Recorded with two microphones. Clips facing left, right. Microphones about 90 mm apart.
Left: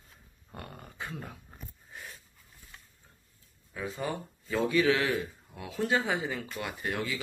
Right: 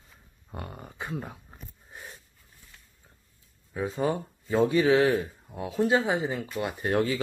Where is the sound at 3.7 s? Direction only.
30° right (ahead or behind).